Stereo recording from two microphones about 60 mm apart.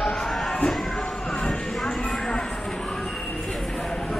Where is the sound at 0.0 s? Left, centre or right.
Centre.